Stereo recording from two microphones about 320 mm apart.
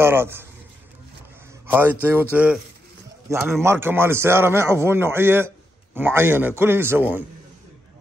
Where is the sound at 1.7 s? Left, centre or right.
Centre.